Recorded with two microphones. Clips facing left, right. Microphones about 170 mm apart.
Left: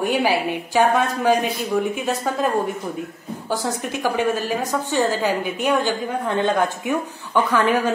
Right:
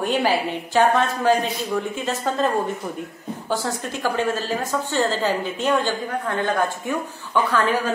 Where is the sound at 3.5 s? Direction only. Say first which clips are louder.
Left 1 dB; 15° left (ahead or behind).